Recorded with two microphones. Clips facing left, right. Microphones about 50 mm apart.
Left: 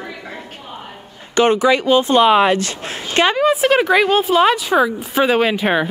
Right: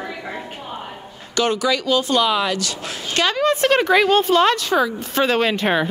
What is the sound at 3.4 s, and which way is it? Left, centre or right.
A woman's voice, centre.